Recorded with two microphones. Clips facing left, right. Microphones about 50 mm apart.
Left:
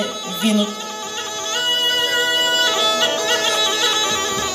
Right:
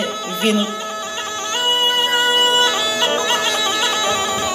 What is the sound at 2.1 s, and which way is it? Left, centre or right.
Bagpipes, right.